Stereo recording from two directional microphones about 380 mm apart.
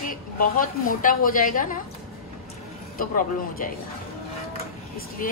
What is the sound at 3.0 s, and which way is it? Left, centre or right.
Speech, left.